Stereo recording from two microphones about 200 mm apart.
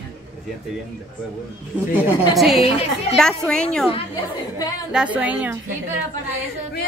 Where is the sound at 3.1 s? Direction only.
5° left (ahead or behind).